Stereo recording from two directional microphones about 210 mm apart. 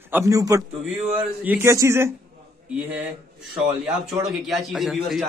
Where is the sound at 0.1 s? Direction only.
15° right (ahead or behind).